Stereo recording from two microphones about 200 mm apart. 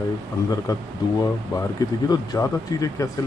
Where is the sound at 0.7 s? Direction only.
15° left (ahead or behind).